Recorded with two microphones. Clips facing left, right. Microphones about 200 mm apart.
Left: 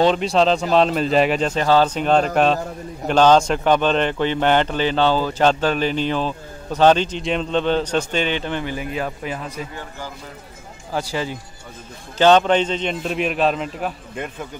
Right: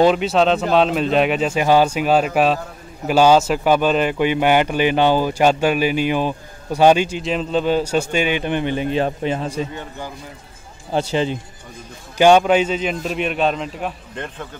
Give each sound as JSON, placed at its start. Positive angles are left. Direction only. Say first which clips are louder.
{"t": 0.0, "sound": "a man's voice", "louder": "right 2 dB", "side_deg": -5}
{"t": 12.2, "sound": "a man's voice", "louder": "right 2 dB", "side_deg": -10}